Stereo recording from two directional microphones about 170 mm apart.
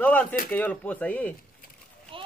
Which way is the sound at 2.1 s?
30° right (ahead or behind).